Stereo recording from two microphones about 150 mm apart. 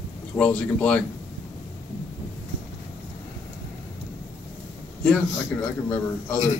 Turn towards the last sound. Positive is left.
turn(degrees=10)  # may be behind; listen again after turning